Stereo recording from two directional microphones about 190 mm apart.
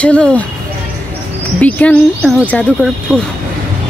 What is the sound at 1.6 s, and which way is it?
Speech, 10° left (ahead or behind).